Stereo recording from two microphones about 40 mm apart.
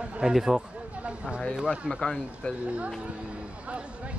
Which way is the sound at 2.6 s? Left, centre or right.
Right.